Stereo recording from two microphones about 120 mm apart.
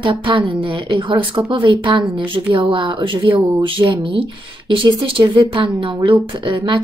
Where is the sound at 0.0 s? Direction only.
45° right (ahead or behind).